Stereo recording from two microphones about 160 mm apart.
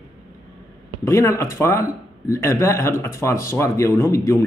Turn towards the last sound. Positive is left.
turn(degrees=20)  # may be behind; listen again after turning